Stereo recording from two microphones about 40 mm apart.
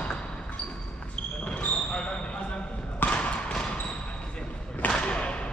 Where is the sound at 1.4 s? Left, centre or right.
Left.